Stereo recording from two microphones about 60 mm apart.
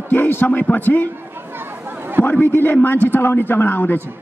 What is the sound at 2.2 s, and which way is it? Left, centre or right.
A man's voice, left.